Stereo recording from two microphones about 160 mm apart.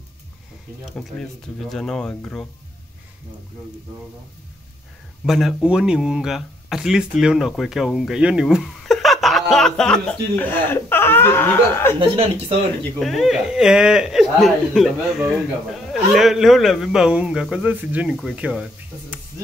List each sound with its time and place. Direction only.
1.6 s speech: centre (ahead or behind)
5.2 s speech: centre (ahead or behind)
12.0 s speech: 35° right (ahead or behind)
13.0 s speech: centre (ahead or behind)